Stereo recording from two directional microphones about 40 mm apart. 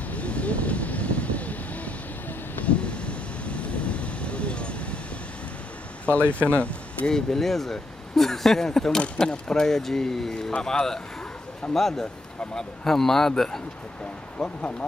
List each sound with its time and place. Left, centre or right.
0.1 s vehicle: left
6.5 s a sound: left
7.1 s speech: centre
14.4 s speech: left